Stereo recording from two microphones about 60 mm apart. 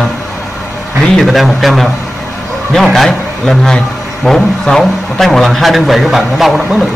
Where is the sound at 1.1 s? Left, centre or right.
Centre.